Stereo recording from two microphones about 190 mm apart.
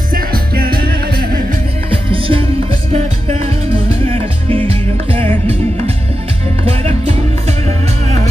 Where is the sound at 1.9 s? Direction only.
30° right (ahead or behind).